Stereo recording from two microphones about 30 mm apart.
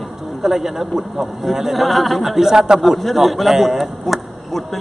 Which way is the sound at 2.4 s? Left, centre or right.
Right.